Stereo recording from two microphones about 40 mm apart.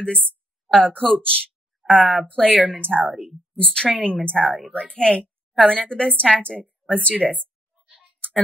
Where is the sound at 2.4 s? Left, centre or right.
Centre.